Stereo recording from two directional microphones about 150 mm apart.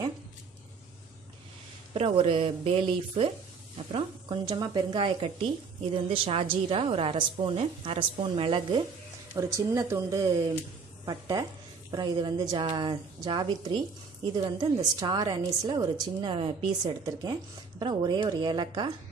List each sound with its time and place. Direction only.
2.0 s a woman's voice: 40° right (ahead or behind)
9.3 s a woman's voice: 20° right (ahead or behind)